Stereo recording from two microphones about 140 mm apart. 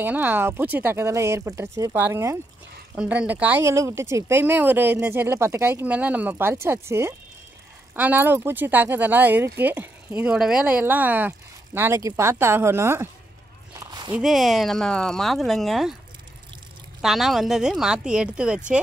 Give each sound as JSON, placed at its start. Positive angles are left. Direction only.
{"t": 0.0, "sound": "speech", "side_deg": -15}
{"t": 13.7, "sound": "a sound", "side_deg": -30}
{"t": 14.1, "sound": "speech", "side_deg": 0}
{"t": 17.0, "sound": "speech", "side_deg": 0}